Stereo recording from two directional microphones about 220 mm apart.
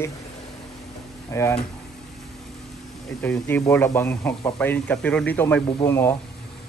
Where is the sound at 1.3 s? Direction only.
10° left (ahead or behind).